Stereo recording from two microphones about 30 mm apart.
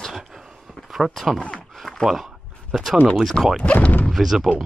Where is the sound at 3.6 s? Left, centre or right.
Left.